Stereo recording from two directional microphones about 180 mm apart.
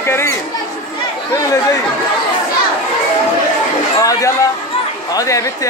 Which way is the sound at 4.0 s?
15° left (ahead or behind).